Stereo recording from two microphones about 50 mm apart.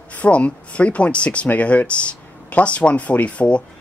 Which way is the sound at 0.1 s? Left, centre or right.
Left.